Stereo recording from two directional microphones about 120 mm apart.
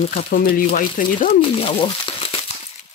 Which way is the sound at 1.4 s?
50° left (ahead or behind).